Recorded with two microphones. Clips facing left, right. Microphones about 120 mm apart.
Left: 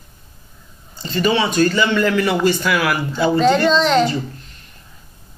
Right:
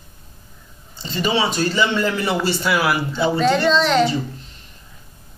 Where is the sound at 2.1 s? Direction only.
30° right (ahead or behind).